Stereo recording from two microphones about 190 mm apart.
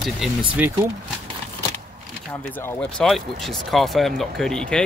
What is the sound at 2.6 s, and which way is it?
Speech, 5° left (ahead or behind).